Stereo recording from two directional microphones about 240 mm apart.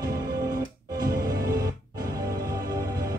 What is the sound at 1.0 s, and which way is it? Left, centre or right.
Music, right.